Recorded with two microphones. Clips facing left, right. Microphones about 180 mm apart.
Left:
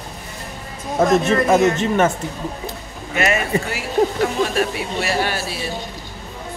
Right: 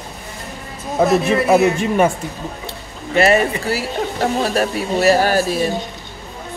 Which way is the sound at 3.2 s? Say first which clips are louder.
Right 5 dB; 35° right (ahead or behind).